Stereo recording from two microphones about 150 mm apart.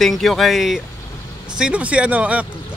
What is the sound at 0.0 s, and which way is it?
Speech, centre (ahead or behind).